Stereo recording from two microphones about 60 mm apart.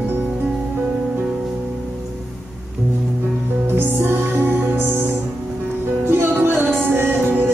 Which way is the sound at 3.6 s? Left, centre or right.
Right.